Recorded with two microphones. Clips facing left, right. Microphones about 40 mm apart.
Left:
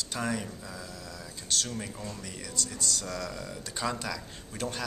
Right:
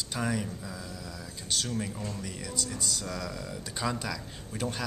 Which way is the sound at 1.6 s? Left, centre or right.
Centre.